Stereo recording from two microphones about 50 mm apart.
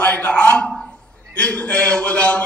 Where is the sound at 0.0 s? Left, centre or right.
Left.